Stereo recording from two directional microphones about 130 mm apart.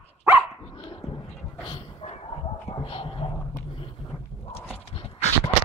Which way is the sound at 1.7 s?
50° left (ahead or behind).